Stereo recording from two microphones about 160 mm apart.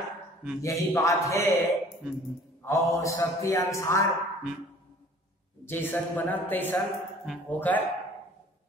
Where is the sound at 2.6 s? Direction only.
15° left (ahead or behind).